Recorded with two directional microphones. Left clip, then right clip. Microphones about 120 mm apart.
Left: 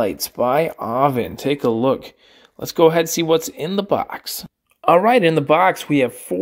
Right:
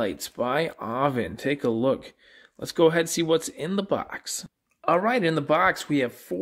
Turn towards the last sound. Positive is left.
turn(degrees=25)  # may be behind; listen again after turning